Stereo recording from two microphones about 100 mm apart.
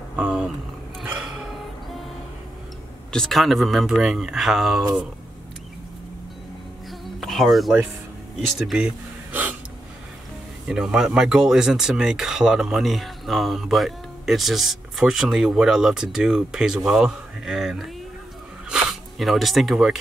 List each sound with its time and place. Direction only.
0.1 s a sound: 10° right (ahead or behind)
3.1 s speech: 5° left (ahead or behind)
6.9 s music: centre (ahead or behind)
8.5 s speech: 5° right (ahead or behind)
9.3 s gasp: 20° right (ahead or behind)
10.7 s speech: 10° right (ahead or behind)